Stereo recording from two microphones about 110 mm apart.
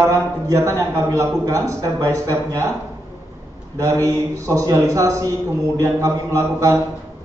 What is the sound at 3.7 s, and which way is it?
A man's voice, 30° right (ahead or behind).